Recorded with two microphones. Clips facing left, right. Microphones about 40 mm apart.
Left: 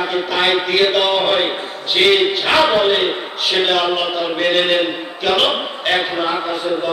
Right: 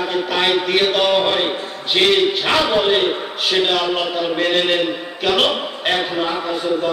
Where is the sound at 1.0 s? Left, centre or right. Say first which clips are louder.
Even; centre.